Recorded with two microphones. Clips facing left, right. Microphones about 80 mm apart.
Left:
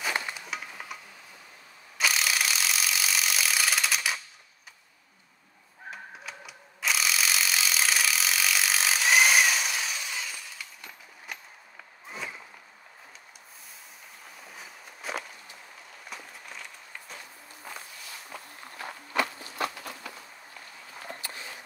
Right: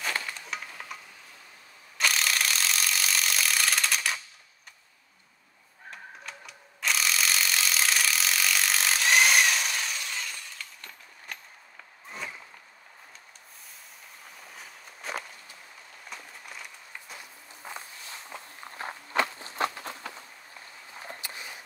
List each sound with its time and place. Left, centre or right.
0.0 s music: centre
0.5 s music: centre
2.0 s rub: centre
5.9 s mechanisms: centre
12.1 s a sound: centre
14.4 s walk: centre
16.1 s a sound: centre
17.7 s walk: right
21.2 s a sound: centre